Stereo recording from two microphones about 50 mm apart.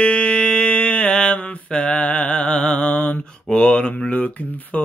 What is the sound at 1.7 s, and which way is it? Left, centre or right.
Music, left.